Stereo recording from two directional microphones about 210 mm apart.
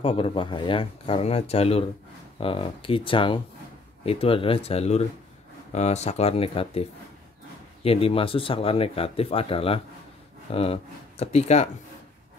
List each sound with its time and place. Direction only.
0.0 s a man's voice: 25° left (ahead or behind)